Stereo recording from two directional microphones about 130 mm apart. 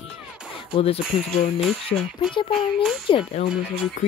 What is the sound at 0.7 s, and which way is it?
Speech, 45° left (ahead or behind).